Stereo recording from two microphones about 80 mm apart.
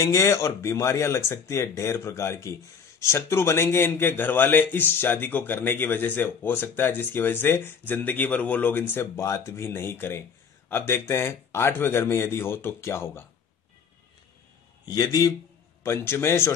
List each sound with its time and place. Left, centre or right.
0.0 s speech: left
14.9 s a man's voice: left
15.8 s speech: left